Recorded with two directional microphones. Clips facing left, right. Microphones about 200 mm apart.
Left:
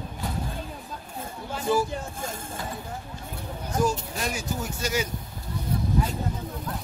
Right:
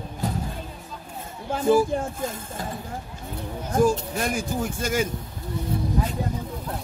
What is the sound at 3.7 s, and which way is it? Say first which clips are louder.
Speech: right 5 dB; 50° right (ahead or behind).